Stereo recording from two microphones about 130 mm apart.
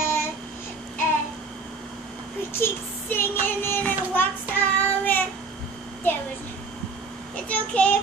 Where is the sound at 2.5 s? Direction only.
15° left (ahead or behind).